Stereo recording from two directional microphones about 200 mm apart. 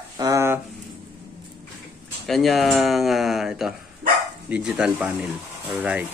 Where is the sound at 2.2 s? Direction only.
Centre (ahead or behind).